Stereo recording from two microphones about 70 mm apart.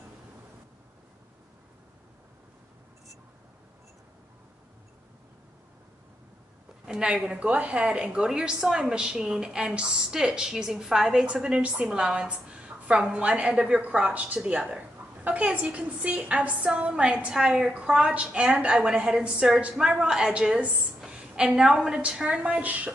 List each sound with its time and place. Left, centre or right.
6.9 s a woman's voice: centre